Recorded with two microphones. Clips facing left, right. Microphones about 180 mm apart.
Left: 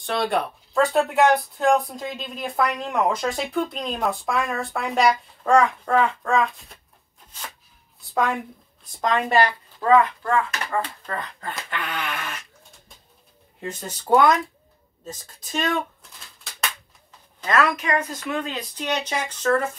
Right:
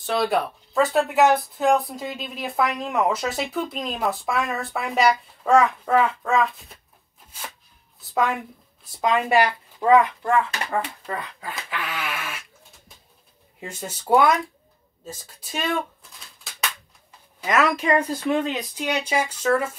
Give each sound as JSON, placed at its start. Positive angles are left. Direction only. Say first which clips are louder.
{"t": 0.0, "sound": "speech", "louder": "right 1 dB", "side_deg": 0}
{"t": 8.0, "sound": "a woman's voice", "louder": "even", "side_deg": 0}
{"t": 17.5, "sound": "speech", "louder": "right 1 dB", "side_deg": -25}
{"t": 18.8, "sound": "speech", "louder": "right 2 dB", "side_deg": -10}